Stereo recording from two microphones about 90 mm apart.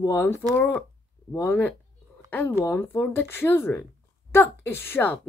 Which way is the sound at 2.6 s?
25° left (ahead or behind).